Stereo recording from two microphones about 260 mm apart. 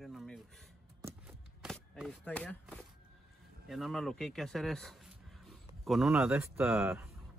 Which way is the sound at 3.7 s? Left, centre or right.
Centre.